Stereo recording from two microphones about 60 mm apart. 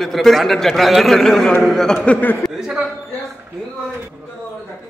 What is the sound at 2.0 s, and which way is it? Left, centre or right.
Speech, left.